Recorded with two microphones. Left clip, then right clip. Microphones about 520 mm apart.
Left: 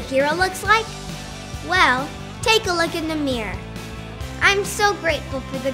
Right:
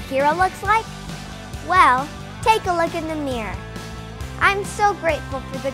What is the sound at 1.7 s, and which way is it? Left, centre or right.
Speech, right.